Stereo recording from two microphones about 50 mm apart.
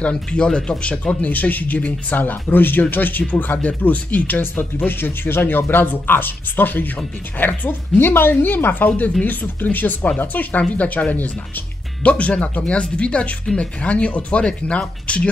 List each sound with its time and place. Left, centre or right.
0.0 s speech: left